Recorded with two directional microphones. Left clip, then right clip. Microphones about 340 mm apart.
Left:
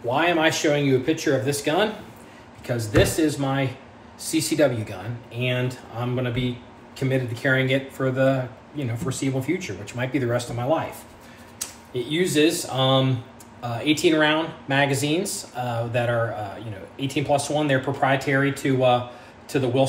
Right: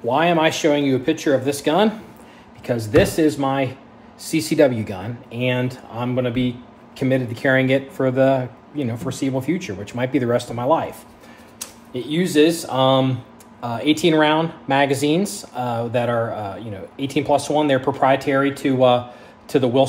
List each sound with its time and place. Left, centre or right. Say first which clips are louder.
0.1 s speech: right 3 dB; right
7.0 s speech: right 5 dB; right